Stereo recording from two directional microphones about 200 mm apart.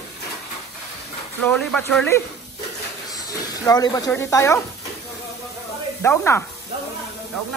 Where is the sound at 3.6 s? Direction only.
20° left (ahead or behind).